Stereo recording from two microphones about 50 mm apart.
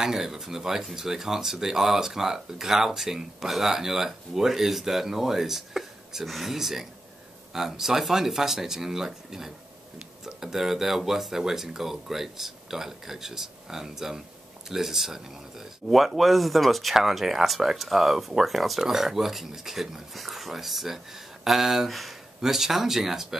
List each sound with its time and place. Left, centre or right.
0.0 s speech: centre